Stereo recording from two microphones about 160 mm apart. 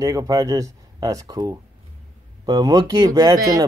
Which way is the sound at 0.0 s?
20° right (ahead or behind).